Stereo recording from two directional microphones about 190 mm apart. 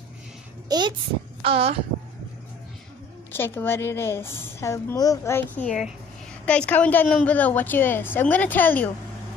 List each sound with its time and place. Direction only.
0.7 s a child's voice: 20° right (ahead or behind)
3.3 s a woman's voice: 10° left (ahead or behind)
5.6 s a woman's voice: centre (ahead or behind)